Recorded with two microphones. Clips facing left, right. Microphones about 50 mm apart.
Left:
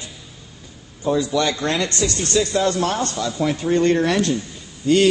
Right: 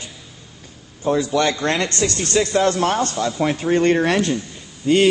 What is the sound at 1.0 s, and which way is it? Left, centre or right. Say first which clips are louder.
Speech: right 1 dB; right.